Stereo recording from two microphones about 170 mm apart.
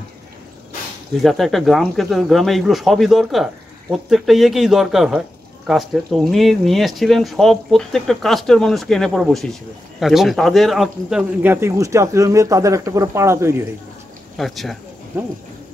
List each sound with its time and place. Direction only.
1.2 s speech: centre (ahead or behind); by 13.6 s 15° right (ahead or behind)
14.3 s speech: centre (ahead or behind)